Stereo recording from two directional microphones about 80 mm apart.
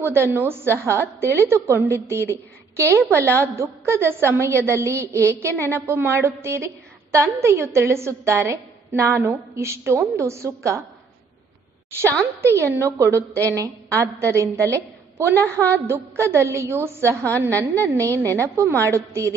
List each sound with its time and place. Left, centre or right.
0.0 s a woman's voice: right
12.4 s a woman's voice: right